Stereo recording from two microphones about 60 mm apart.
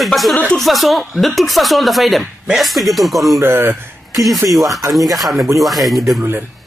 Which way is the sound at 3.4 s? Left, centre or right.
Right.